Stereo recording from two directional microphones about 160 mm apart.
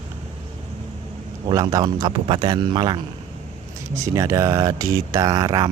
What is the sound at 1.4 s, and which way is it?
Speech, 25° right (ahead or behind).